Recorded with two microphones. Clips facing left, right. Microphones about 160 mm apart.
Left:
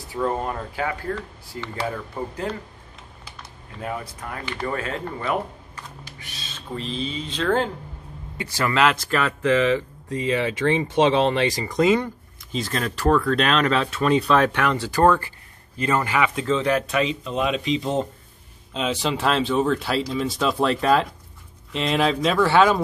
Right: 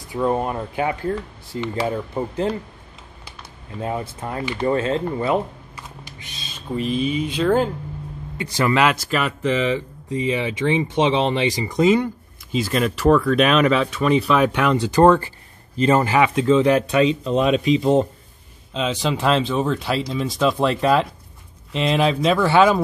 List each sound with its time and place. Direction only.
0.1 s speech: 15° right (ahead or behind)
3.8 s speech: 25° right (ahead or behind)
6.1 s speech: 15° right (ahead or behind)
16.9 s speech: 35° right (ahead or behind)
18.8 s speech: centre (ahead or behind)